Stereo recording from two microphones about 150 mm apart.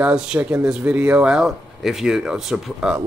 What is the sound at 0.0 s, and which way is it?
Speech, 5° right (ahead or behind).